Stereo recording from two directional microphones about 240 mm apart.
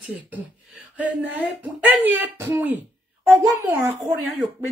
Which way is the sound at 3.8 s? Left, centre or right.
Centre.